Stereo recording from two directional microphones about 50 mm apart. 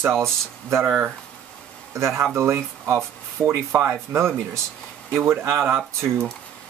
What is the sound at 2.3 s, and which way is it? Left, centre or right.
Speech, right.